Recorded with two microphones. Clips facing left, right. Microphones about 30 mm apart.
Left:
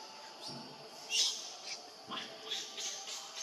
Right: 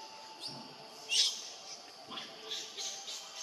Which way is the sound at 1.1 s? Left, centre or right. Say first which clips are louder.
Right 3 dB; right.